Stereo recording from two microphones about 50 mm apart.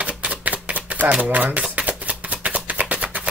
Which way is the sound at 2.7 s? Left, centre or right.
Right.